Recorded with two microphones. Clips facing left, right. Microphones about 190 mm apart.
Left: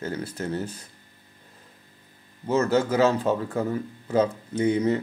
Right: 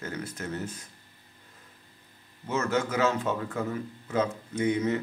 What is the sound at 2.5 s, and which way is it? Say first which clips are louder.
Speech: left 6 dB; 35° left (ahead or behind).